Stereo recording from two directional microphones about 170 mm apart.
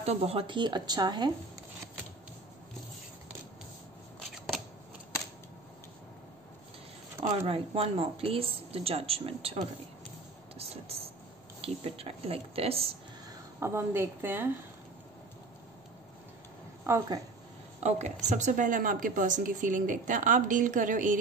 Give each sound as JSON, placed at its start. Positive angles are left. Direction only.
{"t": 0.0, "sound": "speech", "side_deg": -40}
{"t": 7.3, "sound": "speech", "side_deg": -35}
{"t": 10.6, "sound": "vehicle", "side_deg": -35}
{"t": 11.6, "sound": "speech", "side_deg": -35}
{"t": 13.3, "sound": "a woman's voice", "side_deg": -15}
{"t": 16.8, "sound": "a woman's voice", "side_deg": -15}
{"t": 17.8, "sound": "a woman's voice", "side_deg": -40}